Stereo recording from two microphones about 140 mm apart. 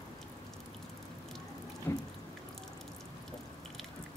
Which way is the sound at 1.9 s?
15° left (ahead or behind).